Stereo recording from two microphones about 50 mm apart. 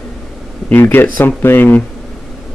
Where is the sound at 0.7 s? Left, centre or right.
Left.